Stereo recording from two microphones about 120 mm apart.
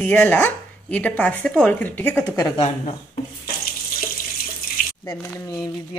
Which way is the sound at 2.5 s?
65° left (ahead or behind).